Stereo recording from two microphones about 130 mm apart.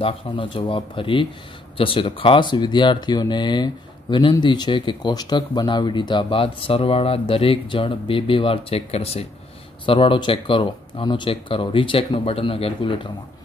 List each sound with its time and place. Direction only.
0.0 s speech: 45° left (ahead or behind)
9.8 s speech: 40° left (ahead or behind)